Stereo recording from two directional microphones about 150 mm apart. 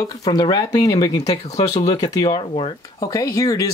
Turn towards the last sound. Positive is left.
turn(degrees=25)  # may be behind; listen again after turning